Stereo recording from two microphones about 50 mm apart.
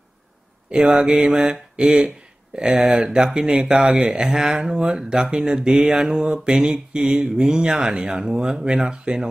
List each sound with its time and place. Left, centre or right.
0.7 s speech: right